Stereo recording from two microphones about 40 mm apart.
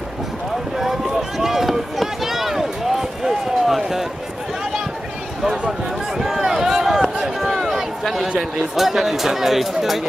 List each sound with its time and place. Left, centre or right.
0.7 s run: centre
5.7 s a sound: centre
8.4 s speech: centre